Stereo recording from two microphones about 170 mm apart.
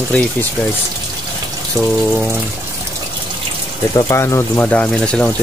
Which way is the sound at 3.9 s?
15° left (ahead or behind).